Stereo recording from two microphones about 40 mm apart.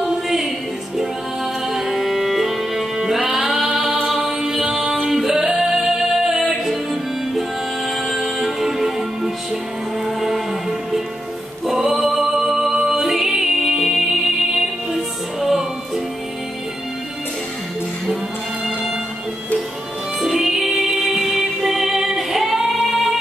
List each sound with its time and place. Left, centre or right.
0.0 s music: centre
3.7 s a capella: centre
4.1 s music: centre
20.2 s music: centre